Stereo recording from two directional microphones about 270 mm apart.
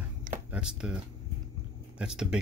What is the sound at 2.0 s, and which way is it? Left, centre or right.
Speech, centre.